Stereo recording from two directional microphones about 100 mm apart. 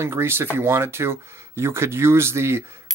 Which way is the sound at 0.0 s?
25° right (ahead or behind).